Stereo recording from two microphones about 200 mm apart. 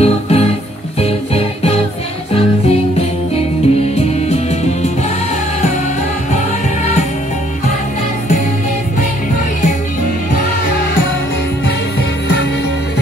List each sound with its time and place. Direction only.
0.0 s music: 30° left (ahead or behind)